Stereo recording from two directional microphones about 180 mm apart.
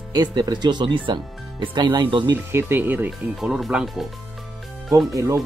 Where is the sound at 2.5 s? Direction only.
10° right (ahead or behind).